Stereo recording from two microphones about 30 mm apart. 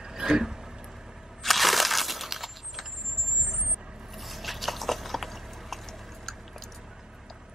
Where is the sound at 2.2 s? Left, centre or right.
Centre.